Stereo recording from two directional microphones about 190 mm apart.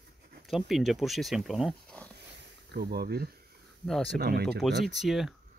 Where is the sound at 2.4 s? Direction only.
55° right (ahead or behind).